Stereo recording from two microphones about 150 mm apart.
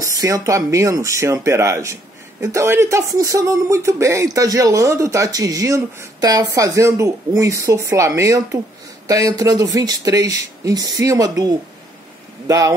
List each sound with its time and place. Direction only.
0.0 s speech: 20° right (ahead or behind)